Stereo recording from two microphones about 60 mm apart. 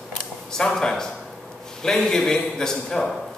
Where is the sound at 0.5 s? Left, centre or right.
Centre.